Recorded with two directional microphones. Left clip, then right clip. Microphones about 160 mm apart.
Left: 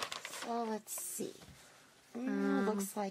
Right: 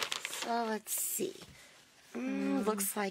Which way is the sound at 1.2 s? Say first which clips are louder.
Right 6 dB; 30° right (ahead or behind).